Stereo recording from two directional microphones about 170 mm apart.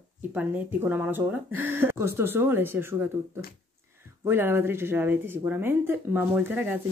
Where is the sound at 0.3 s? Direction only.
10° right (ahead or behind).